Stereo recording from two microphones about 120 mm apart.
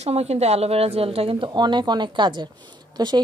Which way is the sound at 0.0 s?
60° right (ahead or behind).